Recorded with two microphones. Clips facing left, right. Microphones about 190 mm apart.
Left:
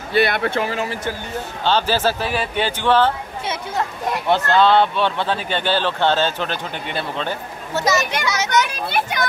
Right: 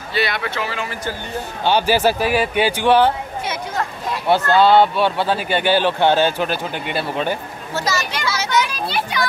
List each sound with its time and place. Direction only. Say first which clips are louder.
0.1 s speech: left 4 dB; 55° left (ahead or behind)
1.6 s speech: right 3 dB; 15° right (ahead or behind)
4.3 s speech: right 2 dB; 10° right (ahead or behind)
7.7 s a child's voice: left 3 dB; 20° left (ahead or behind)
8.6 s speech: left 1 dB; 50° left (ahead or behind)